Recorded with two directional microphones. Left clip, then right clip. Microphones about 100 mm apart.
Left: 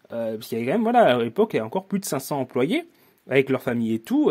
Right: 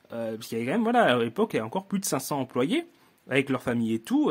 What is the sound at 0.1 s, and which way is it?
Speech, 25° left (ahead or behind).